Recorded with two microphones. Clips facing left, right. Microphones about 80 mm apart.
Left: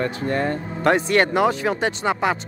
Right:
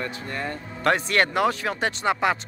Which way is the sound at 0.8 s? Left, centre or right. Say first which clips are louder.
Left 4 dB; centre.